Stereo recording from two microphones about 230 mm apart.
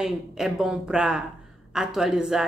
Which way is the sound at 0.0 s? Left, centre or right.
Centre.